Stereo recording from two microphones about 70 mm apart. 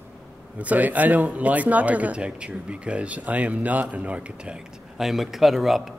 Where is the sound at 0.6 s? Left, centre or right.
Right.